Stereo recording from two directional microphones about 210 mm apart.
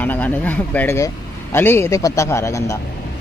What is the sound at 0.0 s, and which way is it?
Speech, 10° left (ahead or behind).